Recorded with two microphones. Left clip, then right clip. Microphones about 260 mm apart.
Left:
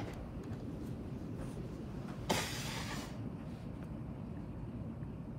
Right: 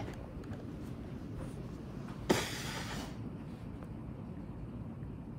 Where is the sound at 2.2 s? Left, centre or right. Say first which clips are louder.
Right 3 dB; right.